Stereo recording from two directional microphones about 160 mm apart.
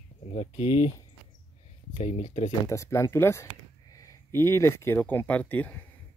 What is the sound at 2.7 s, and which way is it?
Speech, 20° left (ahead or behind).